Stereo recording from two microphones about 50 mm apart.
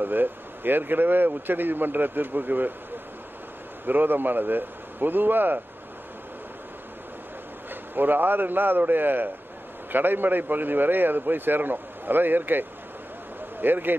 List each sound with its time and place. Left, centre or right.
0.0 s speech: right
3.8 s speech: right
7.9 s a man's voice: right